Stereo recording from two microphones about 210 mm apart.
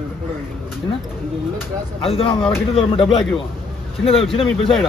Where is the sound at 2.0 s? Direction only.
25° left (ahead or behind).